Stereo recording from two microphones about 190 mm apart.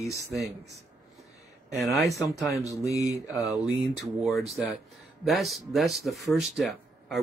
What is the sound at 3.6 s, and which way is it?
Speech, 5° right (ahead or behind).